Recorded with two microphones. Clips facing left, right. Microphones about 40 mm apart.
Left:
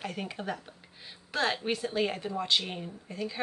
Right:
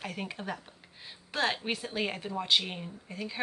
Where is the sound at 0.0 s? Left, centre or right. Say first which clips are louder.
Left 2 dB; centre.